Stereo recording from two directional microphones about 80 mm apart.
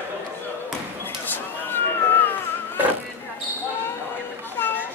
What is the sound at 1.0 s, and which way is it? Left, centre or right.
Cat, left.